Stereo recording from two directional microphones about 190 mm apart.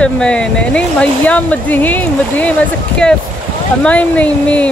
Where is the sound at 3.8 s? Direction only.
5° left (ahead or behind).